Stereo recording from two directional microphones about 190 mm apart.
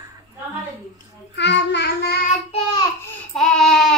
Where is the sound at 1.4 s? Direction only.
65° left (ahead or behind).